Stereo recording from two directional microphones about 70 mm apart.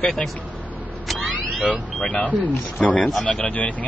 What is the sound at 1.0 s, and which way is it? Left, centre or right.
Vehicle, centre.